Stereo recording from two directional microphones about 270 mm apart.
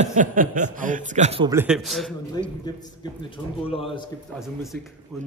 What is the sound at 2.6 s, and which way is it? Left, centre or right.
A man's voice, centre.